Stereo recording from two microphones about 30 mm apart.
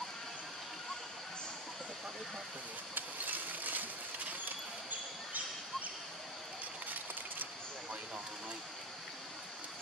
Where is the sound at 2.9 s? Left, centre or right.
Right.